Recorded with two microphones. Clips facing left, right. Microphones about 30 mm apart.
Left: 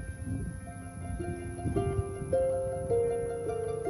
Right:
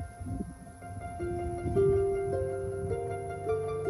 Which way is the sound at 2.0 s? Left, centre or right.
Centre.